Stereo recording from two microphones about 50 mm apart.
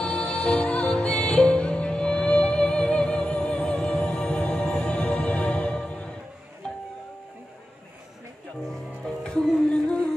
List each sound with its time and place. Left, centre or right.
0.0 s music: left
9.0 s music: centre